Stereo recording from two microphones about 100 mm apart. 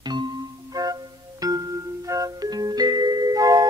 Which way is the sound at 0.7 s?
40° right (ahead or behind).